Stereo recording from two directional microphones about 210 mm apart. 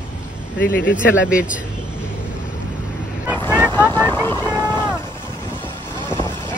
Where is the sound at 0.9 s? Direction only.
5° right (ahead or behind).